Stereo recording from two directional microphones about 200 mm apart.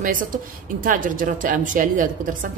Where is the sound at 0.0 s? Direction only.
40° right (ahead or behind).